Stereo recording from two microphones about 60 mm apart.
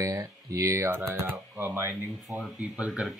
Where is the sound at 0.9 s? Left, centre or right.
Right.